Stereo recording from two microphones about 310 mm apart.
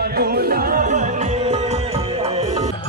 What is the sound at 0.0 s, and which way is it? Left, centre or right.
Music, right.